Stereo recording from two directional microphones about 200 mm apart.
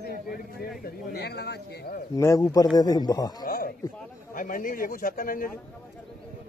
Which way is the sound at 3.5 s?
45° left (ahead or behind).